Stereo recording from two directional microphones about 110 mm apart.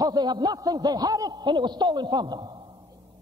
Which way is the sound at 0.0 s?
40° right (ahead or behind).